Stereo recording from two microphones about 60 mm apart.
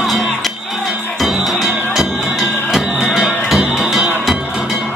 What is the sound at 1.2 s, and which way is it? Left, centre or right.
Music, centre.